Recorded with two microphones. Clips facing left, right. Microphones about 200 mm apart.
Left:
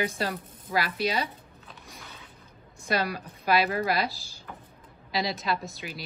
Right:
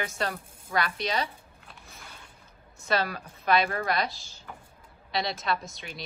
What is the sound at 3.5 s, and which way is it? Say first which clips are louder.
Speech: left 1 dB; 5° left (ahead or behind).